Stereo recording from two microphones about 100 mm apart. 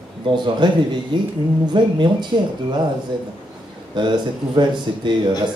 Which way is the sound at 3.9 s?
50° right (ahead or behind).